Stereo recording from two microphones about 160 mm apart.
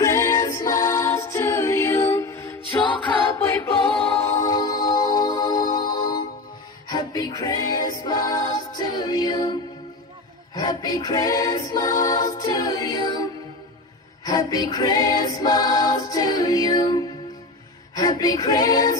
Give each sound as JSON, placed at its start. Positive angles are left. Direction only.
{"t": 0.0, "sound": "music", "side_deg": 20}